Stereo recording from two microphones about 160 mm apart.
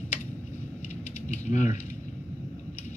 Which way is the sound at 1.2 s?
50° left (ahead or behind).